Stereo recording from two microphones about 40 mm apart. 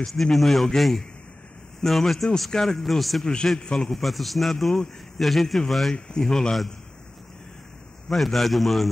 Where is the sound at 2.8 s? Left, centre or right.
Centre.